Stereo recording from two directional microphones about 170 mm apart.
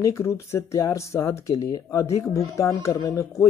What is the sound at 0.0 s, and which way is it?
Speech, 15° left (ahead or behind).